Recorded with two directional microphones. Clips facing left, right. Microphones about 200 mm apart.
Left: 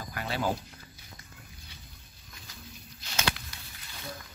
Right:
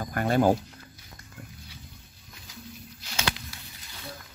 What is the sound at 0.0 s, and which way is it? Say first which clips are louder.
Speech: right 9 dB; 50° right (ahead or behind).